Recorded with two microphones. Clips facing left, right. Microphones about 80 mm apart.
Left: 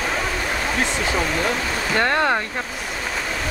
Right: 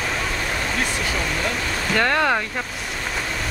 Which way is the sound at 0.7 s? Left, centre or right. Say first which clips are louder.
Left 2 dB; left.